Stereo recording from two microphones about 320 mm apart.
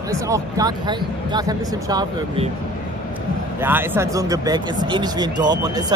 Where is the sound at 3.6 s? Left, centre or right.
Centre.